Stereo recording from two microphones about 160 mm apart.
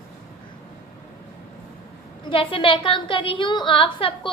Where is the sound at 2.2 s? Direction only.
35° left (ahead or behind).